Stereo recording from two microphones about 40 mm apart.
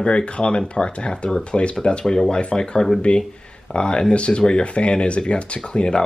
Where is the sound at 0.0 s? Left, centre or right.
Left.